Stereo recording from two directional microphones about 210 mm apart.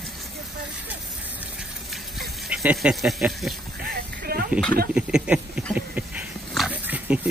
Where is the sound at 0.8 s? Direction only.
10° right (ahead or behind).